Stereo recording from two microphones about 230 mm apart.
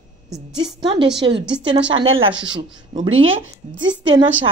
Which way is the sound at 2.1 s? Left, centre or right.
Right.